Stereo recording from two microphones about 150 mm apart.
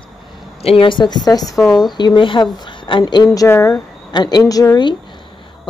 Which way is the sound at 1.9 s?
30° left (ahead or behind).